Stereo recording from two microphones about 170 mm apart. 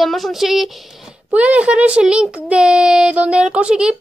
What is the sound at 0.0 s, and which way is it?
Speech, centre (ahead or behind).